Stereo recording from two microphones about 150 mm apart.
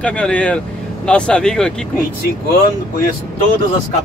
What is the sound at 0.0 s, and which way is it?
Speech, 5° left (ahead or behind).